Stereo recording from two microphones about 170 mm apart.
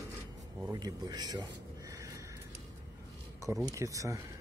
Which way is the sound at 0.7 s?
20° right (ahead or behind).